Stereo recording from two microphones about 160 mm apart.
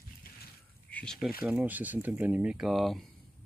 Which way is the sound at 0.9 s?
5° left (ahead or behind).